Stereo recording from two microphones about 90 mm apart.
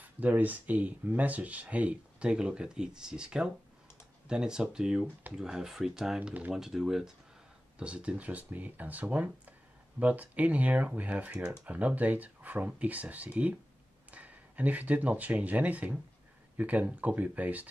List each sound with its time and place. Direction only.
0.0 s speech: 20° right (ahead or behind)
6.5 s speech: 5° right (ahead or behind)